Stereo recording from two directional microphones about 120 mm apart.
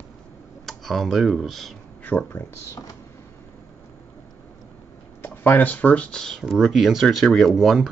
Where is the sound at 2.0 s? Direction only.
15° left (ahead or behind).